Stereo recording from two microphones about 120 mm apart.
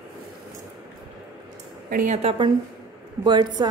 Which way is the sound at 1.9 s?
75° right (ahead or behind).